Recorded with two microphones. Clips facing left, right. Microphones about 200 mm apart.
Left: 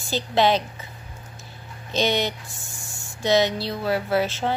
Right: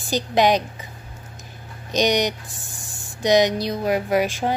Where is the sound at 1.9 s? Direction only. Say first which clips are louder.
Right 3 dB; 15° right (ahead or behind).